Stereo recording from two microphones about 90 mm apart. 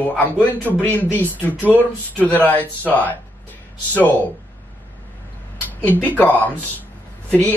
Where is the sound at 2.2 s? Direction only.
20° left (ahead or behind).